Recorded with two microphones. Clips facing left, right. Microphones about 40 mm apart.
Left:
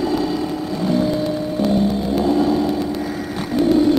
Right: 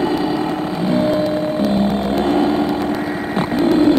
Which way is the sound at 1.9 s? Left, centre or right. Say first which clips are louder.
Right 1 dB; right.